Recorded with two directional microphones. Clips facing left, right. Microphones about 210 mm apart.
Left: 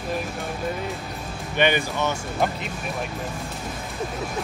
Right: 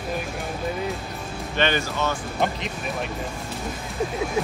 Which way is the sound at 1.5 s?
15° left (ahead or behind).